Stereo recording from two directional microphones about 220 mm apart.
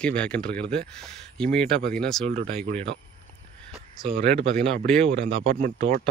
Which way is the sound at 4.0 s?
25° right (ahead or behind).